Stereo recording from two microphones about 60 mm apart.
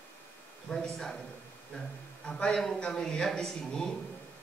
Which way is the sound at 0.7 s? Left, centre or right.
Centre.